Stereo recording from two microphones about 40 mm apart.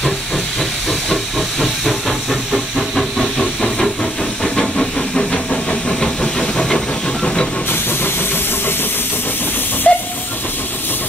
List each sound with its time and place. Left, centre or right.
0.8 s hiss: centre
4.6 s vehicle: centre
6.4 s hiss: centre
9.9 s hiss: left